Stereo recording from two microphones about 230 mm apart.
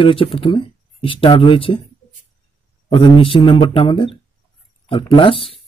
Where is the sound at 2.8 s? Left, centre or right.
Left.